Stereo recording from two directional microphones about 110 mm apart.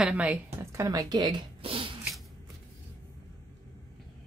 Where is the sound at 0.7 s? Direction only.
35° right (ahead or behind).